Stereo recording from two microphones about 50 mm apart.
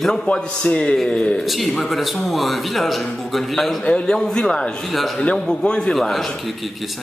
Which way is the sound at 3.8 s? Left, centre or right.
Centre.